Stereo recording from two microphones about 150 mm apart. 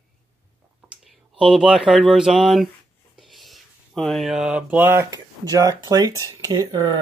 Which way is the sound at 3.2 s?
Centre (ahead or behind).